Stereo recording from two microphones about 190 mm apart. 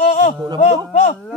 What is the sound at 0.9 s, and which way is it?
Speech, 40° left (ahead or behind).